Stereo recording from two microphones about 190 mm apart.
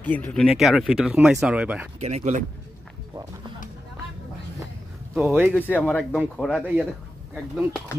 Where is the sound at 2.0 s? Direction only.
35° right (ahead or behind).